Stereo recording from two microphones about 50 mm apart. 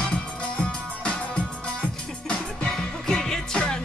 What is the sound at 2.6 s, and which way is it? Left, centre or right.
Music, centre.